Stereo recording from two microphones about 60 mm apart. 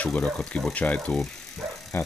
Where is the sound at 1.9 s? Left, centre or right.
Left.